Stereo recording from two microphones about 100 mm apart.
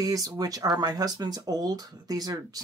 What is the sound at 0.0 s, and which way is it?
Speech, 35° right (ahead or behind).